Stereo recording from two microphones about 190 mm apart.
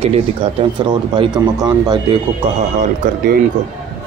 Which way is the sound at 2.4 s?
35° right (ahead or behind).